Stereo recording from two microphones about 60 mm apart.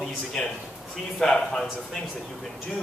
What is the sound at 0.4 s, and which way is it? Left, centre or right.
Speech, centre.